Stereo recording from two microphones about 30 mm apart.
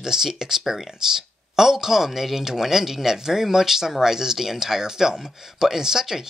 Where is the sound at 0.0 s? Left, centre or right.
Centre.